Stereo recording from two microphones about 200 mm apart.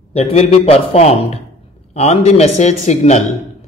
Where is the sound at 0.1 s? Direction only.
30° left (ahead or behind).